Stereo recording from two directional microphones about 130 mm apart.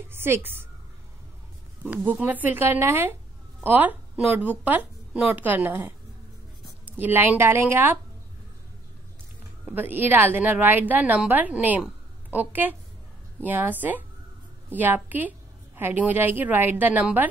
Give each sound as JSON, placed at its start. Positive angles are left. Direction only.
{"t": 0.1, "sound": "a woman's voice", "side_deg": -15}
{"t": 1.9, "sound": "a woman's voice", "side_deg": -10}
{"t": 9.8, "sound": "a woman's voice", "side_deg": -15}